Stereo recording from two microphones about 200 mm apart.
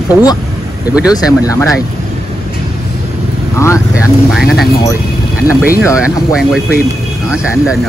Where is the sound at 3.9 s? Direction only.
5° right (ahead or behind).